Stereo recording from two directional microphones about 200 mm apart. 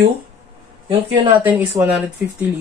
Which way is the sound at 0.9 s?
25° right (ahead or behind).